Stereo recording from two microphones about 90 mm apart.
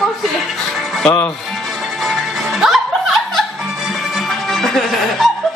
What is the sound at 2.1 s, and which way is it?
Music, centre (ahead or behind).